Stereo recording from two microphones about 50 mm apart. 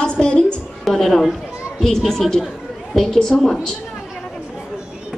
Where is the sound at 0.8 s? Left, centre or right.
Centre.